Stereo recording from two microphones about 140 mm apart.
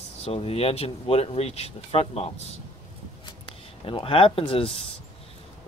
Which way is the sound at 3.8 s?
40° left (ahead or behind).